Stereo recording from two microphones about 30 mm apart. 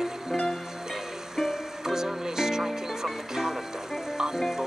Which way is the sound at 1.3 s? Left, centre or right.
Centre.